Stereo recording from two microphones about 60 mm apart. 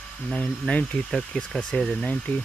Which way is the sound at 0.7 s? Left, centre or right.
Centre.